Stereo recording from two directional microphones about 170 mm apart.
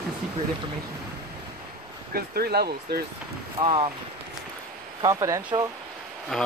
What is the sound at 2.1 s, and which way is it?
Speech, 65° right (ahead or behind).